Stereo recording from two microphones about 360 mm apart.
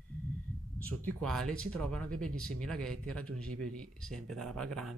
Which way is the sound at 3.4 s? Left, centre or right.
Right.